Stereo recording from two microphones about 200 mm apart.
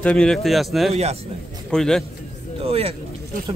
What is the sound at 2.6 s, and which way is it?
Speech, 30° right (ahead or behind).